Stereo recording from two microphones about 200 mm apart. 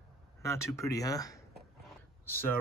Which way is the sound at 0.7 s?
15° left (ahead or behind).